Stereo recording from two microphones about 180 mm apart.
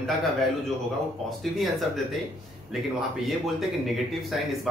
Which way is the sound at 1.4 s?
Centre (ahead or behind).